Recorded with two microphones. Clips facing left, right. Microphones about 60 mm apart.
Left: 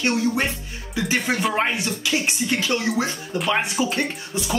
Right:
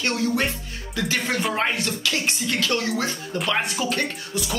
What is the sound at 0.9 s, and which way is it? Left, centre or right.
Speech, centre.